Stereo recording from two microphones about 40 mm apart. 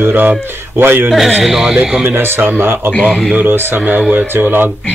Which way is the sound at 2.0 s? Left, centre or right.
Right.